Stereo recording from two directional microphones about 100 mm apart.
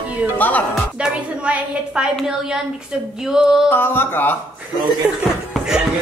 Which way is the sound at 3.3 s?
5° right (ahead or behind).